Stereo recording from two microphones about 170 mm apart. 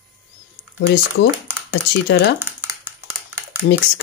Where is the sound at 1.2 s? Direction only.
80° left.